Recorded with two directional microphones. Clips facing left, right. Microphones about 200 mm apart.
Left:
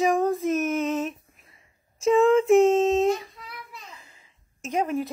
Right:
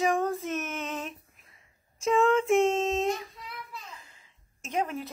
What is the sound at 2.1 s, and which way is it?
Speech, 5° left (ahead or behind).